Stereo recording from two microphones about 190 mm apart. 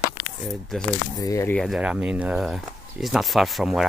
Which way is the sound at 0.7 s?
5° left (ahead or behind).